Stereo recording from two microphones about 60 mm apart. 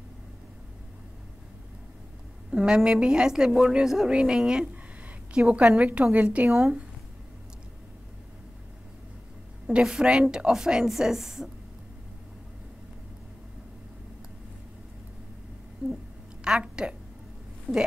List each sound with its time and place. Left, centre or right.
2.5 s a woman's voice: centre
6.4 s speech: right
9.8 s speech: centre
16.4 s a woman's voice: centre